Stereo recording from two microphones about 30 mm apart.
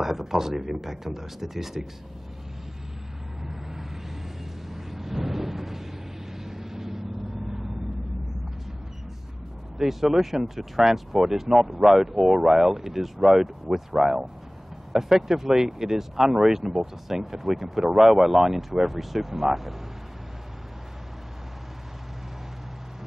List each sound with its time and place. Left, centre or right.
0.0 s speech: centre
4.6 s vehicle: centre
9.8 s speech: centre